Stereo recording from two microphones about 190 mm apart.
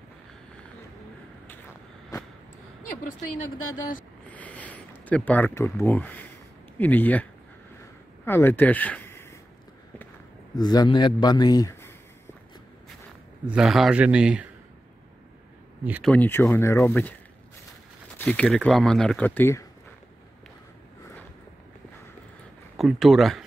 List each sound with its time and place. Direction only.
4.3 s a sound: 10° left (ahead or behind)
6.8 s speech: 10° left (ahead or behind)
8.3 s speech: 10° left (ahead or behind)
10.5 s a man's voice: 20° left (ahead or behind)
13.5 s speech: centre (ahead or behind)
16.0 s speech: 10° left (ahead or behind)
18.1 s speech: 5° left (ahead or behind)
22.8 s speech: centre (ahead or behind)